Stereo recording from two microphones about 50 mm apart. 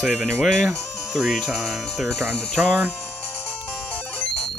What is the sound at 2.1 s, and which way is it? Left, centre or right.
Speech, centre.